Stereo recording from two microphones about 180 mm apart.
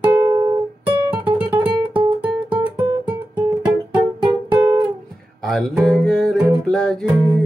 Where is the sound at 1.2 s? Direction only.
10° right (ahead or behind).